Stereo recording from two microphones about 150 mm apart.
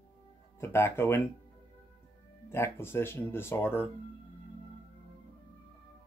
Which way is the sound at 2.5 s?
15° left (ahead or behind).